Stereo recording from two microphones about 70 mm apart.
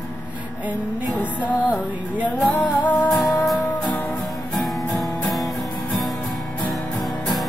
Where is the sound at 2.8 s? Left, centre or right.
Left.